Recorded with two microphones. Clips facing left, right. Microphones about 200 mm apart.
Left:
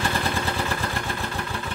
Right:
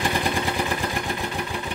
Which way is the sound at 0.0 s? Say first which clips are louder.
Right 2 dB; 15° right (ahead or behind).